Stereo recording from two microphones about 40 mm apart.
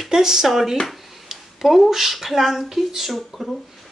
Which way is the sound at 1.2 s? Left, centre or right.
Centre.